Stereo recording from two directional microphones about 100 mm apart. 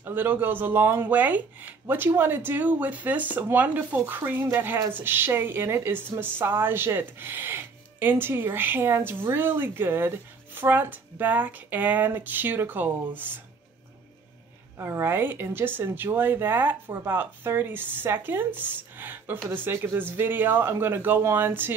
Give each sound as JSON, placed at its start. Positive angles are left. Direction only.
{"t": 0.0, "sound": "speech", "side_deg": -20}
{"t": 14.8, "sound": "speech", "side_deg": -25}